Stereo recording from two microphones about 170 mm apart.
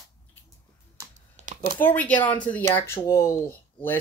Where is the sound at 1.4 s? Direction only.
45° right (ahead or behind).